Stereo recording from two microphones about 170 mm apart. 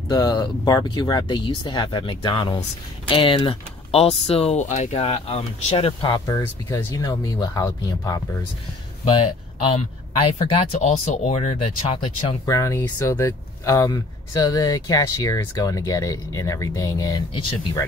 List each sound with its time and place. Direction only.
0.1 s speech: 25° left (ahead or behind)
10.4 s speech: 35° left (ahead or behind)
12.4 s speech: 20° left (ahead or behind)